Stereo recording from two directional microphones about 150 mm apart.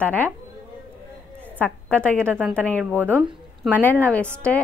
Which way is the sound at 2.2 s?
15° right (ahead or behind).